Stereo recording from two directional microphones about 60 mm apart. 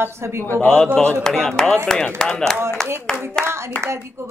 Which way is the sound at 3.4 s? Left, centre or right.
Right.